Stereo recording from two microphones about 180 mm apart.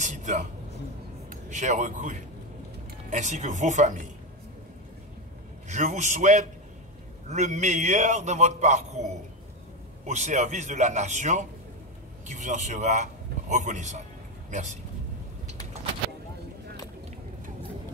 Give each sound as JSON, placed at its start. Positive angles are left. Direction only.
{"t": 0.0, "sound": "a sound", "side_deg": -40}
{"t": 1.3, "sound": "a man's voice", "side_deg": -40}
{"t": 5.7, "sound": "a man's voice", "side_deg": -40}
{"t": 10.0, "sound": "a man's voice", "side_deg": -40}